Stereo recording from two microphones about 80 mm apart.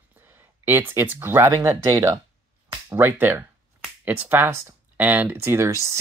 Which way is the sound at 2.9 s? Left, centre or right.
Right.